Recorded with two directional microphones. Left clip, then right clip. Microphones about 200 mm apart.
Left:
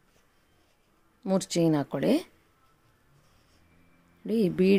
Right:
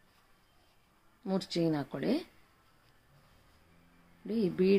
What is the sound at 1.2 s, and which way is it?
Speech, 45° left (ahead or behind).